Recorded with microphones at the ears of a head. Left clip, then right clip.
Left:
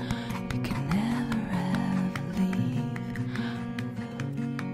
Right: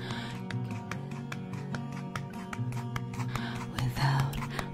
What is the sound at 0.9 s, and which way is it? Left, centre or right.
Music, left.